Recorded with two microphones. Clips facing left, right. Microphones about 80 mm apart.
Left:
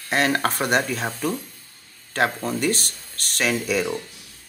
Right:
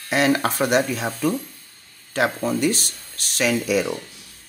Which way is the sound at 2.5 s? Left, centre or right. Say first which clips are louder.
Right 2 dB; left.